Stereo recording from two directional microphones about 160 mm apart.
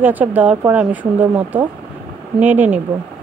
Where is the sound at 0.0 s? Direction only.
10° right (ahead or behind).